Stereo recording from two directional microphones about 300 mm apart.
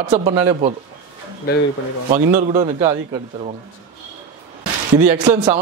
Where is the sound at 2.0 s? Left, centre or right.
Centre.